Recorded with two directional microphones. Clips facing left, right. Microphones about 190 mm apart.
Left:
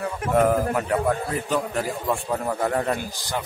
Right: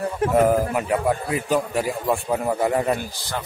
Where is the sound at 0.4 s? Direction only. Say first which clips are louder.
Even; 10° right (ahead or behind).